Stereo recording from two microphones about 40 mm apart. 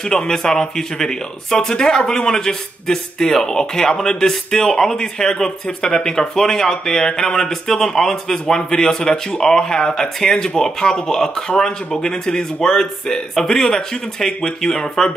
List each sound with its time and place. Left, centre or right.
0.0 s speech: centre